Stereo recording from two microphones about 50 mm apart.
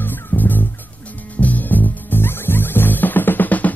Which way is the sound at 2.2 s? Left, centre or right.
Left.